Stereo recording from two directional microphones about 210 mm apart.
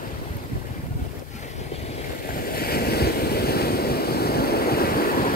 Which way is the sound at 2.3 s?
45° left (ahead or behind).